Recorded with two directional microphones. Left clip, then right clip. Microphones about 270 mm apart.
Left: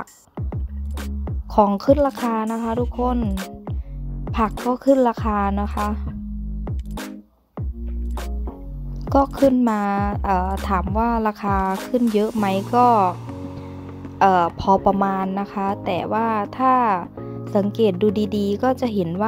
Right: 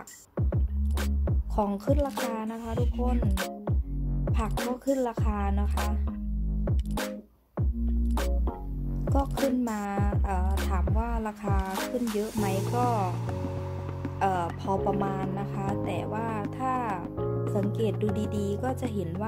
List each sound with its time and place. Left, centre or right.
1.5 s speech: left
4.7 s speech: left
6.9 s music: centre
9.3 s speech: centre
9.6 s speech: left
11.7 s speech: centre
12.2 s speech: left
14.1 s speech: left